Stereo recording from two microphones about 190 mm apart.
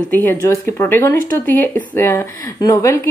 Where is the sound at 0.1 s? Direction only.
10° left (ahead or behind).